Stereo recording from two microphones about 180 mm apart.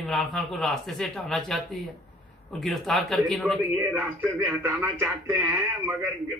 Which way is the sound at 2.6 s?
Centre (ahead or behind).